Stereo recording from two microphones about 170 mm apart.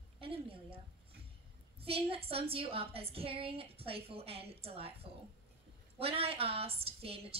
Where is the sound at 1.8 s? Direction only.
35° right (ahead or behind).